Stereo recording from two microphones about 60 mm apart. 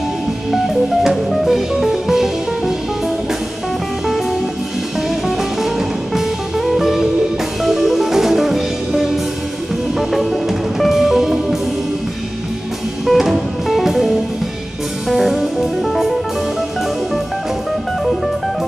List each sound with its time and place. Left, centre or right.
0.5 s music: centre
5.6 s music: centre
13.0 s music: centre